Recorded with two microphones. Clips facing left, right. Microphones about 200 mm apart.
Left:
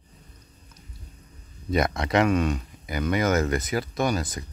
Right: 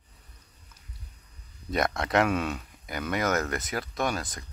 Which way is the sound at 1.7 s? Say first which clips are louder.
Left 3 dB; centre (ahead or behind).